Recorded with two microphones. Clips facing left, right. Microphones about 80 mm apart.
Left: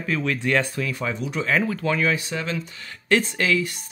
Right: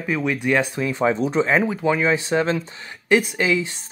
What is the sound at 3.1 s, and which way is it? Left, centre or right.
Speech, centre.